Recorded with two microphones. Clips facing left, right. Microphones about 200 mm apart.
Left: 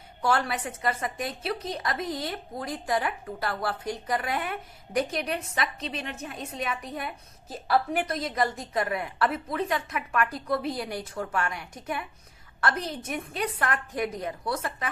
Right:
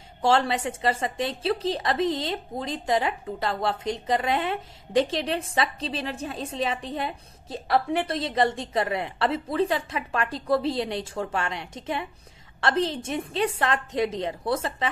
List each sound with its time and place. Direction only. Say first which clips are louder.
0.2 s a woman's voice: right 4 dB; 25° right (ahead or behind)